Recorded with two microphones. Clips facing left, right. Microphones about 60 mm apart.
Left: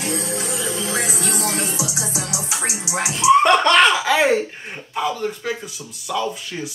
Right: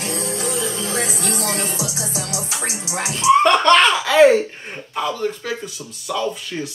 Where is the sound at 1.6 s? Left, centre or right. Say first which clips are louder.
Even; right.